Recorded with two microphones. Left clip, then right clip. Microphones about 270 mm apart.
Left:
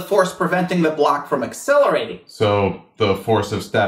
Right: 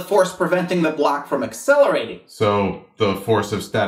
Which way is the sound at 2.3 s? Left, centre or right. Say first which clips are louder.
Left 1 dB; left.